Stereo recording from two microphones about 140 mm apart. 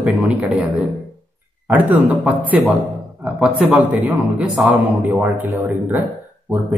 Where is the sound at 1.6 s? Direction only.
15° right (ahead or behind).